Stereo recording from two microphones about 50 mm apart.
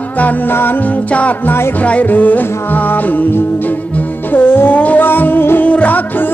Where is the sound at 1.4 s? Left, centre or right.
Left.